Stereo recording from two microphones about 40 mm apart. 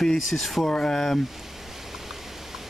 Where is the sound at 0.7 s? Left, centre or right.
Centre.